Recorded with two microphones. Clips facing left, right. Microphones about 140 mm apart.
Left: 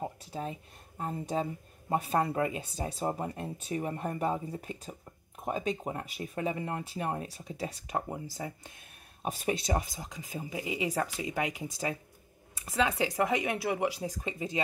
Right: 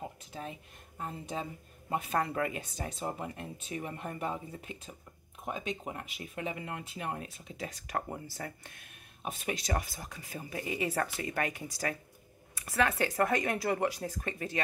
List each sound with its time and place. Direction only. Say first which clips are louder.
0.0 s speech: left 5 dB; 35° left (ahead or behind); by 8.7 s 15° left (ahead or behind)
9.2 s speech: left 5 dB; 35° left (ahead or behind)
9.7 s speech: left 3 dB; 20° left (ahead or behind)